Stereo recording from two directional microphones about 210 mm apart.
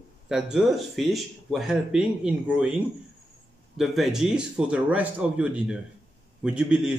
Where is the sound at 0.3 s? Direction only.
Centre (ahead or behind).